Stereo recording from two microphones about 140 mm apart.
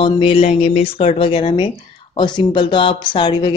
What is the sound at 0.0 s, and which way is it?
Speech, 40° left (ahead or behind).